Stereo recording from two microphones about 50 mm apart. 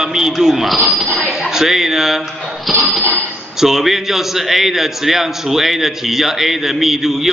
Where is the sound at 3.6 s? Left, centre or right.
Centre.